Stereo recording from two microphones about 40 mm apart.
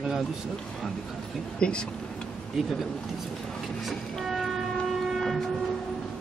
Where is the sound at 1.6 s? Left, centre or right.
Left.